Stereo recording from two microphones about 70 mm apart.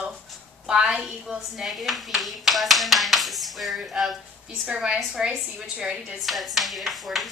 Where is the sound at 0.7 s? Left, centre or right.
Centre.